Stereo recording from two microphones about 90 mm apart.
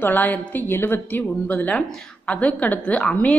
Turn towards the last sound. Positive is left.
turn(degrees=15)  # may be behind; listen again after turning